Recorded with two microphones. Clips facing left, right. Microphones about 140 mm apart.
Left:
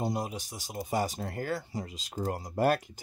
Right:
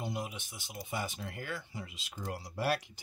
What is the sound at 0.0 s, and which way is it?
Speech, 40° left (ahead or behind).